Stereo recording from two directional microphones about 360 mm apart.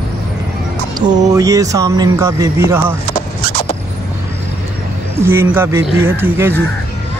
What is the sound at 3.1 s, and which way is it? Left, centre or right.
Vehicle, centre.